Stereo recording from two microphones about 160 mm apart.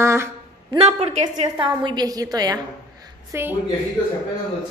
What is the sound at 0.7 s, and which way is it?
Speech, 40° right (ahead or behind).